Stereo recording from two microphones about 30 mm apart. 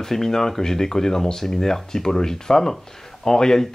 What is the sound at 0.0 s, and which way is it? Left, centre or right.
Speech, centre.